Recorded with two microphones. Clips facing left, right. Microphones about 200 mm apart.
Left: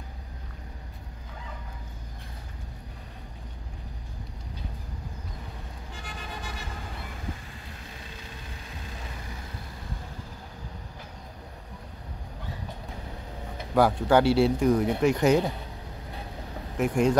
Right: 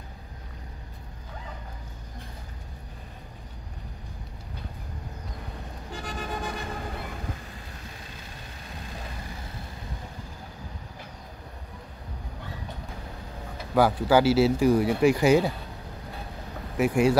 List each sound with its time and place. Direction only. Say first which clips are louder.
6.0 s vehicle: right 7 dB; 45° right (ahead or behind)
13.7 s speech: even; 5° right (ahead or behind)
16.7 s speech: right 2 dB; 5° right (ahead or behind)